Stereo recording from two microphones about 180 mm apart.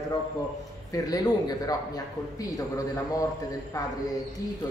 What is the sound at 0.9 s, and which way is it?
A man's voice, 20° left (ahead or behind).